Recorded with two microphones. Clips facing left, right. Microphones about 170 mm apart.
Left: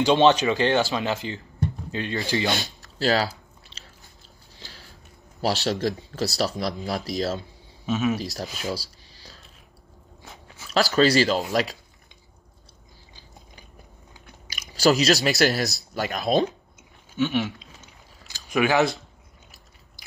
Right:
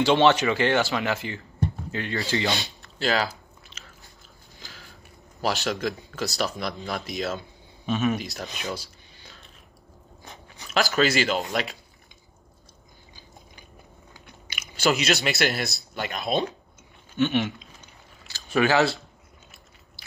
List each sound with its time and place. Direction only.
0.0 s speech: 15° left (ahead or behind)
2.5 s chewing: 45° left (ahead or behind)
4.6 s a sound: 35° left (ahead or behind)
5.4 s speech: 35° left (ahead or behind)
7.8 s speech: centre (ahead or behind)
8.5 s a sound: 35° left (ahead or behind)
10.2 s dog: 5° left (ahead or behind)
10.7 s speech: 35° left (ahead or behind)
14.7 s speech: 35° left (ahead or behind)
17.1 s a sound: 5° left (ahead or behind)
18.5 s speech: 15° left (ahead or behind)